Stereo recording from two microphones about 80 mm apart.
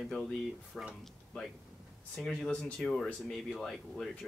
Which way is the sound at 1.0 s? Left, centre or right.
Centre.